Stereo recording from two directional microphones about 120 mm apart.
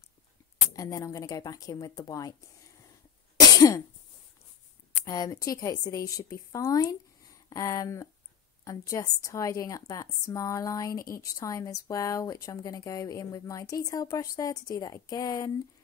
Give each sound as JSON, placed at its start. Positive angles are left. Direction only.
{"t": 0.7, "sound": "a woman's voice", "side_deg": 30}
{"t": 3.3, "sound": "cough", "side_deg": 30}
{"t": 5.0, "sound": "a woman's voice", "side_deg": 30}